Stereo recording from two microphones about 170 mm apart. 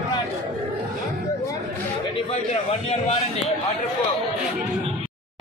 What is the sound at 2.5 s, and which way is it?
A man's voice, 40° left (ahead or behind).